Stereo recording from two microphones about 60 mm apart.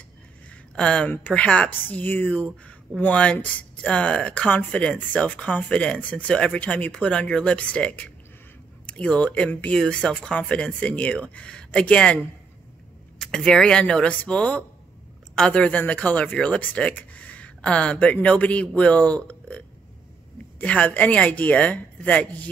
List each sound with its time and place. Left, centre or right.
0.7 s speech: centre
13.2 s a woman's voice: centre
15.6 s speech: left